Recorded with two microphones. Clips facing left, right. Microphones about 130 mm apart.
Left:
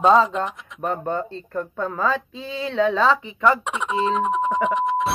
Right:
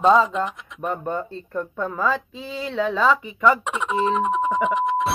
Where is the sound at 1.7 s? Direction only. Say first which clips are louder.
Even; 30° left (ahead or behind).